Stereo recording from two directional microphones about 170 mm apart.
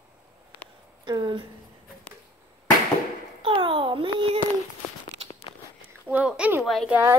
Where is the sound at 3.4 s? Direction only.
30° right (ahead or behind).